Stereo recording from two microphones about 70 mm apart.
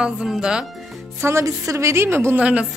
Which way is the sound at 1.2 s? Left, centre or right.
Right.